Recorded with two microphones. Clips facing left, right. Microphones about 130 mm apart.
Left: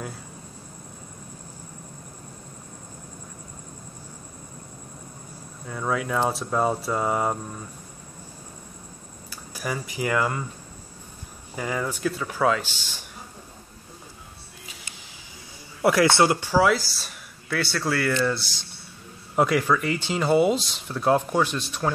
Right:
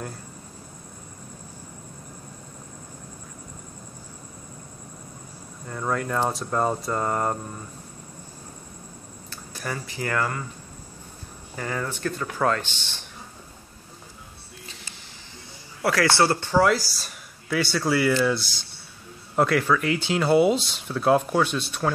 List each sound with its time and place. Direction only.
5.7 s speech: centre (ahead or behind)
9.3 s speech: 10° left (ahead or behind)
11.5 s speech: 10° left (ahead or behind)
15.8 s speech: 20° left (ahead or behind); by 18.3 s 10° right (ahead or behind)
19.3 s speech: centre (ahead or behind)